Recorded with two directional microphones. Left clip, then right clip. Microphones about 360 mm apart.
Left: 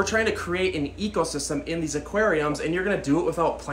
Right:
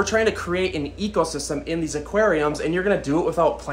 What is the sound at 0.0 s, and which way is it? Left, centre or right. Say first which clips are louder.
Speech: right 3 dB; centre.